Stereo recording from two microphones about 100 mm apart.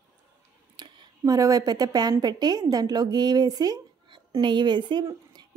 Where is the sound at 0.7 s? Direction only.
50° right (ahead or behind).